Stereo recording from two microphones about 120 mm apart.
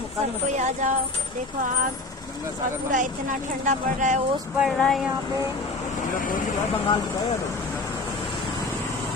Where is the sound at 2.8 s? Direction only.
90° right.